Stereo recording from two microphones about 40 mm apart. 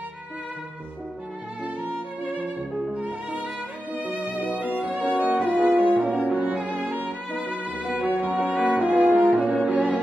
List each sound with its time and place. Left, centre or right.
2.9 s music: right
8.2 s music: right